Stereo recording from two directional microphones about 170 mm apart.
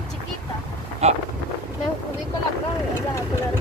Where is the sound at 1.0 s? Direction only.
40° right (ahead or behind).